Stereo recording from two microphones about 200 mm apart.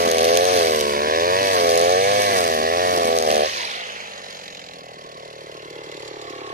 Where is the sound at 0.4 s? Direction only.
40° right (ahead or behind).